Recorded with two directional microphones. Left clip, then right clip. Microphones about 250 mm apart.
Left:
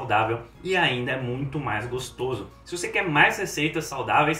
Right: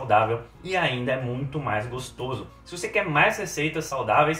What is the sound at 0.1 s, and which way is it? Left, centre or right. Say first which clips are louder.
Speech: right 3 dB; centre.